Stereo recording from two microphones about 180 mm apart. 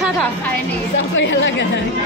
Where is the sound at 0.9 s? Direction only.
90° left.